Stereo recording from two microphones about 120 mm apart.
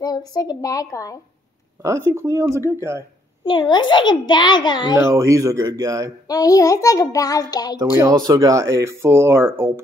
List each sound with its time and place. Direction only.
0.0 s a child's voice: 35° left (ahead or behind)
1.8 s speech: 25° right (ahead or behind)
3.4 s a child's voice: 40° left (ahead or behind)
4.9 s speech: 25° right (ahead or behind)
6.2 s a child's voice: 30° left (ahead or behind)
7.9 s speech: 20° right (ahead or behind)